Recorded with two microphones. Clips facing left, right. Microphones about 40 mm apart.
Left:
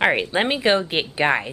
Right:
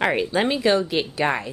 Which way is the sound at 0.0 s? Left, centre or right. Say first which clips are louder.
Left 1 dB; left.